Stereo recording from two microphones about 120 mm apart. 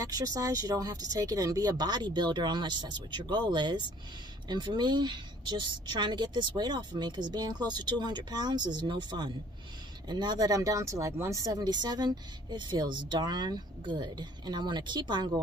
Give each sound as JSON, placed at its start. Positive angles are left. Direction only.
{"t": 0.0, "sound": "speech", "side_deg": -30}